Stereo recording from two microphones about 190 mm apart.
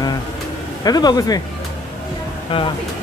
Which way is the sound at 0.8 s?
20° left (ahead or behind).